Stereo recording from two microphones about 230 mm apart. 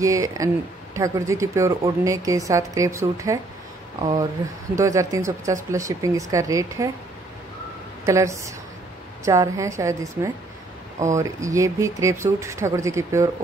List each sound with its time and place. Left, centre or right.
0.0 s speech: centre
8.0 s speech: centre